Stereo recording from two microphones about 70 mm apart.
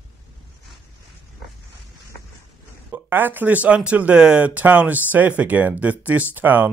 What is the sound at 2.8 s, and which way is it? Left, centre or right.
Speech, right.